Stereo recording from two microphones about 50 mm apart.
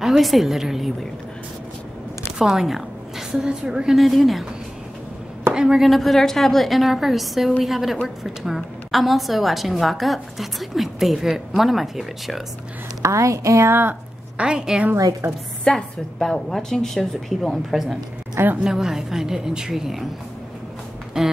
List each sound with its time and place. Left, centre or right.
0.0 s a woman's voice: centre
2.3 s a woman's voice: centre
4.0 s a woman's voice: centre
5.5 s a woman's voice: centre
5.9 s a woman's voice: centre
13.0 s a woman's voice: right
14.3 s a woman's voice: centre
15.2 s a woman's voice: right
15.7 s a woman's voice: centre
18.6 s a woman's voice: centre